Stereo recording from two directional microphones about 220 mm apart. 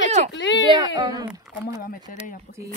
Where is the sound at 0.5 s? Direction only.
55° left (ahead or behind).